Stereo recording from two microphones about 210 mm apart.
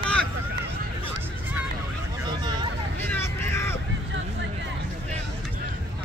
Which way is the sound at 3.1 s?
10° left (ahead or behind).